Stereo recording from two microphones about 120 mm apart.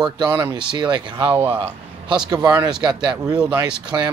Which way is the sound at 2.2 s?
35° right (ahead or behind).